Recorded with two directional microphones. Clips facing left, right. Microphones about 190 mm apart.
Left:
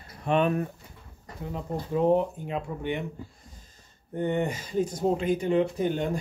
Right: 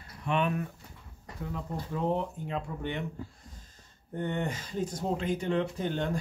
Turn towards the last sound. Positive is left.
turn(degrees=15)  # may be behind; listen again after turning